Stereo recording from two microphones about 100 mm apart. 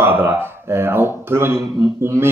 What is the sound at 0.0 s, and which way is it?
Speech, 25° right (ahead or behind).